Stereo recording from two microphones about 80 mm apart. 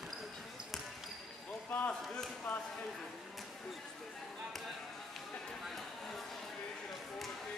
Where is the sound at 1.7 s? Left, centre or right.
Centre.